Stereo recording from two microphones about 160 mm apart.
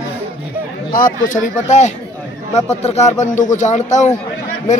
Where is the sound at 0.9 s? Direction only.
60° left (ahead or behind).